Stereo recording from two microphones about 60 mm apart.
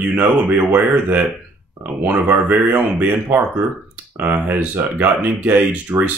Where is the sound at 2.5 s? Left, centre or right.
Right.